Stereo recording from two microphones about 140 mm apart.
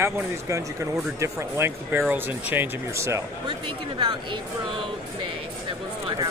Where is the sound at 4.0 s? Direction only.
35° right (ahead or behind).